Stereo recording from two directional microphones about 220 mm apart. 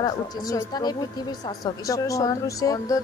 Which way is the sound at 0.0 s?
15° left (ahead or behind).